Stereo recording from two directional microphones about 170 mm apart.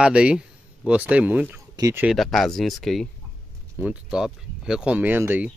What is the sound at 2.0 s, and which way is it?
Speech, centre (ahead or behind).